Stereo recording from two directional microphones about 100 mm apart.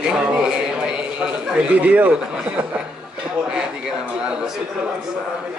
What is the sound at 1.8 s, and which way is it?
Mantra, 15° right (ahead or behind).